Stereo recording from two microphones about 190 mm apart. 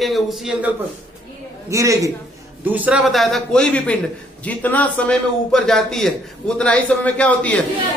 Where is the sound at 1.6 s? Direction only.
15° right (ahead or behind).